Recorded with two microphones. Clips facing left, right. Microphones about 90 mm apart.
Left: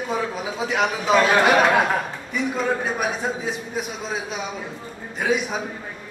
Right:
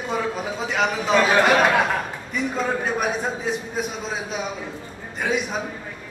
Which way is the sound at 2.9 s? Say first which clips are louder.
Right 1 dB; centre (ahead or behind).